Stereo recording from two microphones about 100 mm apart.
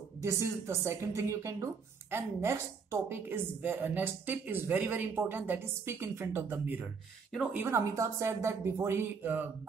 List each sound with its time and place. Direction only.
0.2 s a woman's voice: 30° right (ahead or behind)